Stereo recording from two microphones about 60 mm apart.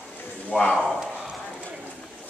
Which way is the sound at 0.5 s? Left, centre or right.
Left.